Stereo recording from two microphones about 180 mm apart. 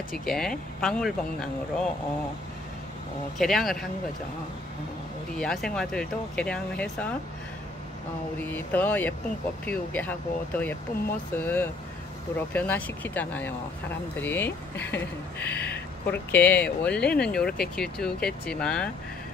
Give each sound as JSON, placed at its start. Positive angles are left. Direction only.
{"t": 0.2, "sound": "speech", "side_deg": 5}
{"t": 3.3, "sound": "speech", "side_deg": 0}
{"t": 5.4, "sound": "speech", "side_deg": 5}
{"t": 8.4, "sound": "speech", "side_deg": 10}